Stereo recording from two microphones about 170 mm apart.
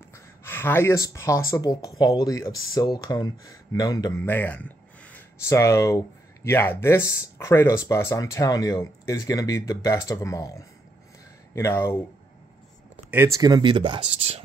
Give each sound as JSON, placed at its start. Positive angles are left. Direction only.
{"t": 0.1, "sound": "speech", "side_deg": 15}
{"t": 13.1, "sound": "speech", "side_deg": -15}